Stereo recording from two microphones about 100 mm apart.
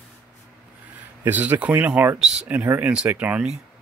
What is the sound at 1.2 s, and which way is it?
Speech, 15° right (ahead or behind).